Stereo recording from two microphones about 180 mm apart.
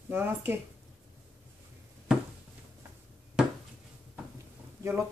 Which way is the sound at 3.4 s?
5° right (ahead or behind).